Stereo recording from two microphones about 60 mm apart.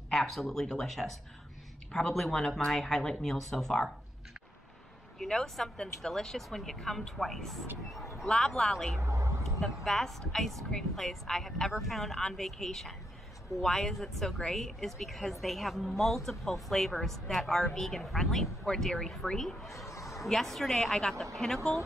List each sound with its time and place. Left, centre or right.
0.1 s a woman's voice: centre
5.2 s a woman's voice: centre
7.9 s vehicle: centre
8.3 s a man's voice: centre
9.0 s vehicle: right
9.4 s a woman's voice: centre
19.7 s a sound: left
20.0 s a woman's voice: centre